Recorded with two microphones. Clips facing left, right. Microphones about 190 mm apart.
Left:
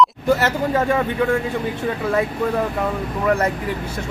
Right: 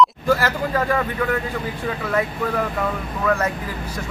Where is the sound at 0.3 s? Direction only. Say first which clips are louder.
Left 2 dB; 25° left (ahead or behind).